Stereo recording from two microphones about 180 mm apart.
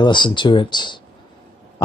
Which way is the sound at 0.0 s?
25° left (ahead or behind).